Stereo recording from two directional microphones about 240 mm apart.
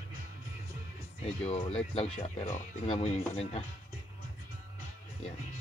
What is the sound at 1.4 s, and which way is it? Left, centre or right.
Speech, left.